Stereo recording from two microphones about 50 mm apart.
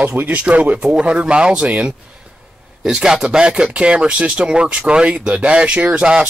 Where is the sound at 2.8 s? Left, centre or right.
Centre.